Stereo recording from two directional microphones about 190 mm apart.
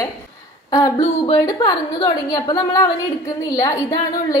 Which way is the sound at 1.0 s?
25° left (ahead or behind).